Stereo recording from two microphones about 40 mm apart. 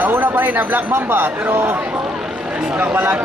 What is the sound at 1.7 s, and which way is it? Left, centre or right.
Speech, right.